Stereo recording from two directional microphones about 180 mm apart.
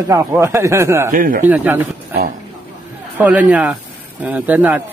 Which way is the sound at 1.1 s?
50° right (ahead or behind).